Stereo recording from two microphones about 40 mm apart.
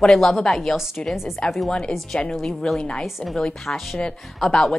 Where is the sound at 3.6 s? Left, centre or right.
Centre.